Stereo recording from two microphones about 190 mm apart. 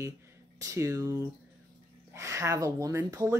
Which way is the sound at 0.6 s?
15° right (ahead or behind).